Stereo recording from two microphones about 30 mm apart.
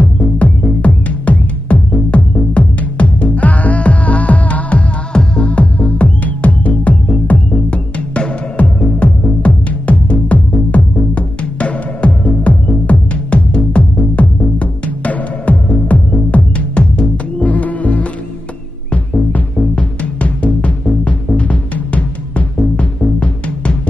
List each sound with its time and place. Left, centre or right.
0.0 s music: left
5.1 s music: left
5.5 s music: left
7.5 s music: left
10.7 s music: left
11.1 s music: left
17.4 s insect: left
19.7 s music: left